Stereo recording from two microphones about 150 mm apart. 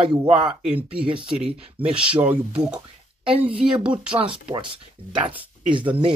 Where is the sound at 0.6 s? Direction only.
5° right (ahead or behind).